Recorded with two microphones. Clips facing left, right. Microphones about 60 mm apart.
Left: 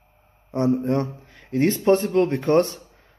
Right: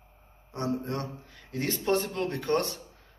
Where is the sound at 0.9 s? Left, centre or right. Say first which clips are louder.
Left 11 dB; left.